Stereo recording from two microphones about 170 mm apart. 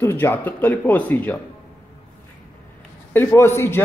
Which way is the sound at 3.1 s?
15° left (ahead or behind).